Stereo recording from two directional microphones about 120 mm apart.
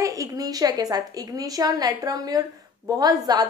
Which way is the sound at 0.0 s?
30° right (ahead or behind).